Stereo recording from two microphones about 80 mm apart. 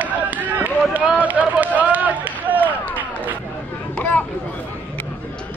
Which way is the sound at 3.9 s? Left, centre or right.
Centre.